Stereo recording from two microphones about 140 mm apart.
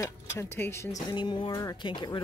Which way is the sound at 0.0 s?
20° left (ahead or behind).